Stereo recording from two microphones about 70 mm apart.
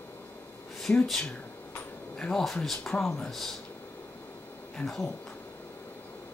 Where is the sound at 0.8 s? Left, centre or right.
Centre.